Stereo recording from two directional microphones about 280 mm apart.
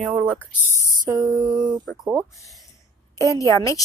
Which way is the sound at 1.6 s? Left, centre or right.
Centre.